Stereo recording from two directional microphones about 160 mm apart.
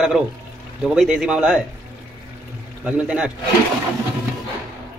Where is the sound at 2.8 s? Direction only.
5° right (ahead or behind).